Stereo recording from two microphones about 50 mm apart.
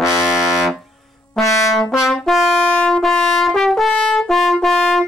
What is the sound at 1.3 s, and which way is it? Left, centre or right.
Brass instrument, centre.